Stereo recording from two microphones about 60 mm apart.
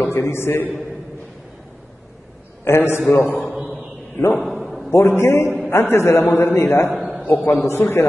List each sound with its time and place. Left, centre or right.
0.0 s a man's voice: left
2.6 s a man's voice: left
4.4 s a sound: centre
4.9 s a man's voice: left
7.0 s a sound: centre
7.2 s a man's voice: left